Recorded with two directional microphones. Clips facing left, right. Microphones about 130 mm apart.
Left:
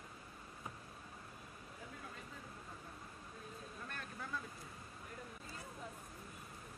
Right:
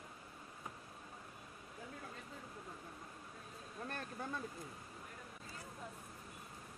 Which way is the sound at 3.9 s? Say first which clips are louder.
Right 6 dB; 35° right (ahead or behind).